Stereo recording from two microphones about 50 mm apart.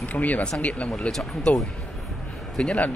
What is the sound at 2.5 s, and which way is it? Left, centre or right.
Speech, centre.